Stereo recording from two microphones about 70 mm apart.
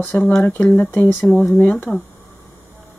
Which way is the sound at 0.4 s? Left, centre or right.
Left.